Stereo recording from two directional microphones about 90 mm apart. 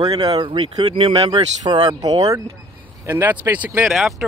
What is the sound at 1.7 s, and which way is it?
Speech, 55° right (ahead or behind).